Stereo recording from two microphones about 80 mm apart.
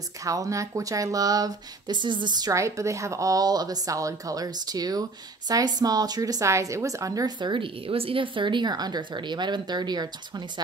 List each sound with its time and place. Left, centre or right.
0.2 s speech: right
2.0 s speech: right
2.5 s speech: right
7.3 s speech: right